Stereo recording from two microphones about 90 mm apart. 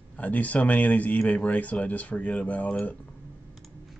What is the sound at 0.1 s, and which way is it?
Speech, 15° left (ahead or behind).